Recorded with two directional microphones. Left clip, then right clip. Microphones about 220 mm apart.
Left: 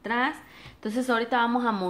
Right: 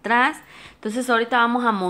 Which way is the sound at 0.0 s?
30° right (ahead or behind).